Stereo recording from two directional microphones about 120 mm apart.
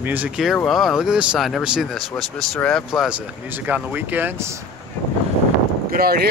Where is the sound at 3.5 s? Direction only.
15° right (ahead or behind).